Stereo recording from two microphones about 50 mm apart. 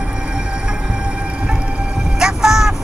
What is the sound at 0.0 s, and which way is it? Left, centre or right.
Whale vocalization, centre.